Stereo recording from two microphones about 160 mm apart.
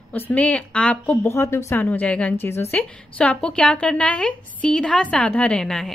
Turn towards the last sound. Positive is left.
turn(degrees=5)  # may be behind; listen again after turning